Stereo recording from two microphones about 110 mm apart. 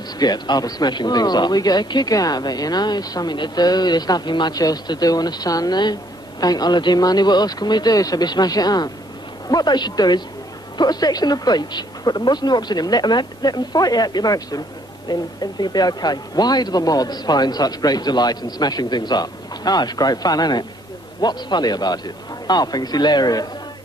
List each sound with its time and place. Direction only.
0.2 s speech: 40° left (ahead or behind)